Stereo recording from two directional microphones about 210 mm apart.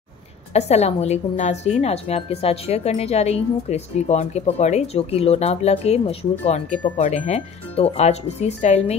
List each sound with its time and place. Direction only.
0.5 s a woman's voice: 30° left (ahead or behind)